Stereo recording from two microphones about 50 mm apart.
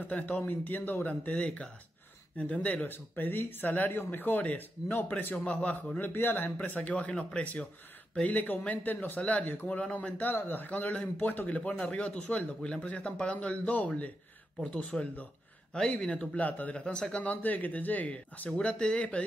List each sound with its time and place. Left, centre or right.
0.0 s speech: left
5.9 s speech: left
6.8 s speech: left
10.2 s speech: left
14.6 s speech: left
16.8 s speech: centre
18.6 s speech: left